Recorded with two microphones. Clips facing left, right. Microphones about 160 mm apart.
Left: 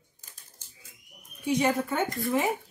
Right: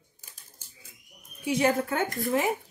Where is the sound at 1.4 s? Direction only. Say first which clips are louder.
Right 1 dB; 5° right (ahead or behind).